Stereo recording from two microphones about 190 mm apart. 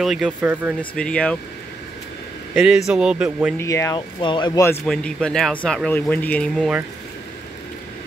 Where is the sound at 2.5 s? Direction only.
5° right (ahead or behind).